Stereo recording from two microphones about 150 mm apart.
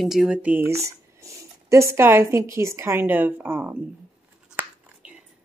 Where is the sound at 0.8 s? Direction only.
20° right (ahead or behind).